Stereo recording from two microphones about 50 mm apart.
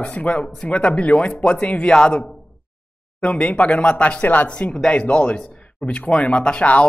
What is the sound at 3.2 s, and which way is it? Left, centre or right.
Speech, left.